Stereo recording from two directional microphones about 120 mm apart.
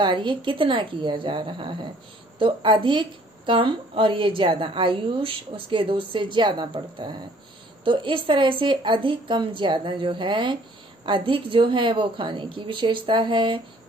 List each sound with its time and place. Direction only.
0.0 s a woman's voice: 45° right (ahead or behind)